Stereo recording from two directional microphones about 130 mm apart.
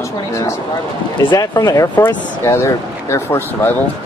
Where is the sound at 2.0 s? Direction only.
15° left (ahead or behind).